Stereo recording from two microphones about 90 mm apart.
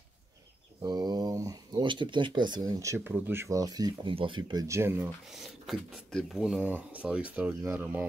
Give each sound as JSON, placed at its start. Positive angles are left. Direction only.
{"t": 0.8, "sound": "mantra", "side_deg": -50}
{"t": 1.9, "sound": "speech", "side_deg": -65}
{"t": 3.0, "sound": "speech", "side_deg": -25}
{"t": 3.5, "sound": "speech", "side_deg": -45}
{"t": 4.0, "sound": "speech", "side_deg": -70}
{"t": 4.6, "sound": "speech", "side_deg": -30}
{"t": 5.3, "sound": "speech", "side_deg": -5}
{"t": 6.4, "sound": "speech", "side_deg": -10}